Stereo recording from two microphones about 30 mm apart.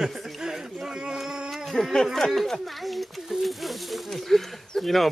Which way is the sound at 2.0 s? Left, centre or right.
Centre.